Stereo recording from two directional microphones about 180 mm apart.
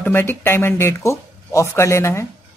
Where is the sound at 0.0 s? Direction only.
10° left (ahead or behind).